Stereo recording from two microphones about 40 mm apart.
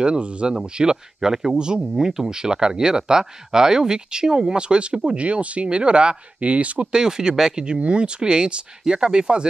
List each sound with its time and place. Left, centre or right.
0.0 s speech: right
6.9 s speech: centre